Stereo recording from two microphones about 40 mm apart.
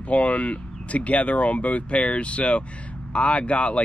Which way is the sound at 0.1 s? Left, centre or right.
Left.